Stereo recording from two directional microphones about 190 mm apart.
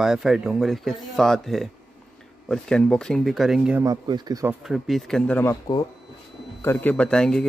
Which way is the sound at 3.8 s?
20° right (ahead or behind).